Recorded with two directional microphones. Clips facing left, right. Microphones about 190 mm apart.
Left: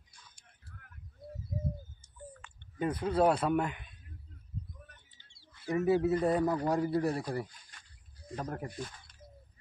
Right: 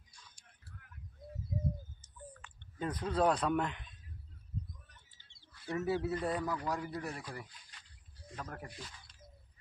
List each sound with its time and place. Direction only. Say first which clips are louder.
2.8 s speech: left 4 dB; 10° left (ahead or behind)
5.5 s speech: left 6 dB; 15° left (ahead or behind)
6.4 s speech: left 8 dB; 35° left (ahead or behind)
7.7 s a sound: left 2 dB; 50° left (ahead or behind)
8.3 s speech: left 7 dB; 35° left (ahead or behind)
8.6 s speech: left 8 dB; 50° left (ahead or behind)